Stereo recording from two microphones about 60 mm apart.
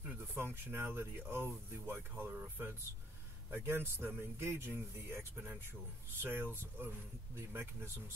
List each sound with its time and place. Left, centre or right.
0.3 s speech: right